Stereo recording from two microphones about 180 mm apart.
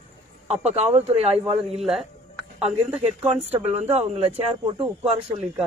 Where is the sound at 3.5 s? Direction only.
35° right (ahead or behind).